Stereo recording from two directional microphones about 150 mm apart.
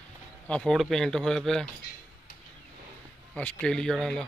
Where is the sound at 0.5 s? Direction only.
5° left (ahead or behind).